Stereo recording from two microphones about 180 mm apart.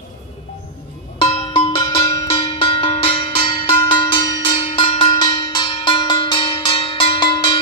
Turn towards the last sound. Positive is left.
turn(degrees=25)  # may be behind; listen again after turning